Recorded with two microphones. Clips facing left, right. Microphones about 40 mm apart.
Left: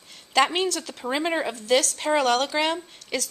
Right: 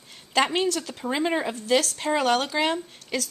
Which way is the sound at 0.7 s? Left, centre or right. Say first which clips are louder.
Right 1 dB; centre.